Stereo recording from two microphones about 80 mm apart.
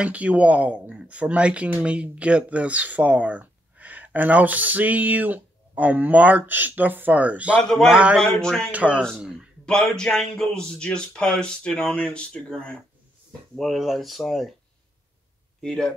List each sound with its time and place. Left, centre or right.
0.0 s speech: centre
8.2 s a man's voice: centre
8.7 s speech: centre
9.7 s a man's voice: centre
13.6 s speech: centre
15.6 s a man's voice: centre